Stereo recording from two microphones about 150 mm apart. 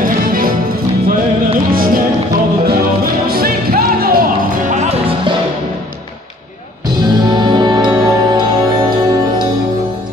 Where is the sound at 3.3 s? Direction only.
85° right; by 5.0 s 50° right (ahead or behind).